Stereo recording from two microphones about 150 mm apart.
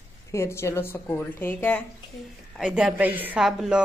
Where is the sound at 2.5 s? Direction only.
5° right (ahead or behind).